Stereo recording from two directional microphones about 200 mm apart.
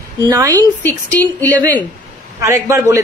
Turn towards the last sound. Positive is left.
turn(degrees=-15)  # may be behind; listen again after turning